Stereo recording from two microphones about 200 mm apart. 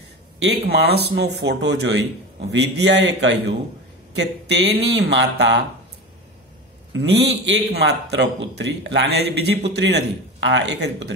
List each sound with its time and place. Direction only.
0.4 s a man's voice: 55° right (ahead or behind)
6.9 s a man's voice: 60° right (ahead or behind)